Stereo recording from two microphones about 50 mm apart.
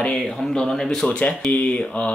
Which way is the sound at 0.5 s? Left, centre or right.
Centre.